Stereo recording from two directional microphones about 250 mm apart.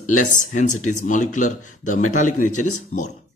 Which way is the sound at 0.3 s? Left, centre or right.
Left.